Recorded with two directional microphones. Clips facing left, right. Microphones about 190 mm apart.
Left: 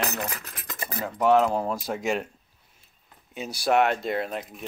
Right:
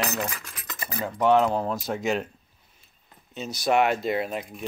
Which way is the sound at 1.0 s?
Centre (ahead or behind).